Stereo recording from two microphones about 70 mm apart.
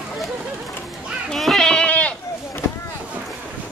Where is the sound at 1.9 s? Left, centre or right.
Left.